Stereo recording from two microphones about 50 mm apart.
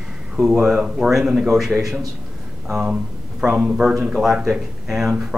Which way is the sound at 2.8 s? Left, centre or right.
Right.